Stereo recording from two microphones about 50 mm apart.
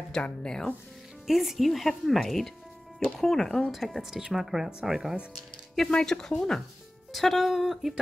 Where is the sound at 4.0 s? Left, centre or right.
Centre.